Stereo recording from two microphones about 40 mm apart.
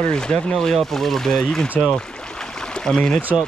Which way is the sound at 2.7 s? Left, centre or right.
Centre.